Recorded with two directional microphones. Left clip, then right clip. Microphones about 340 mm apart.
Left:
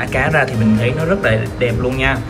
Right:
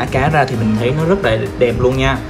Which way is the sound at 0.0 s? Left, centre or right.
Centre.